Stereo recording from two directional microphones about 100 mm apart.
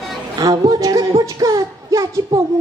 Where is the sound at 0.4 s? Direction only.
40° right (ahead or behind).